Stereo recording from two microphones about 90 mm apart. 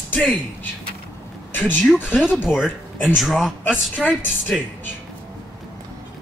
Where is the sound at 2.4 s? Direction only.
5° right (ahead or behind).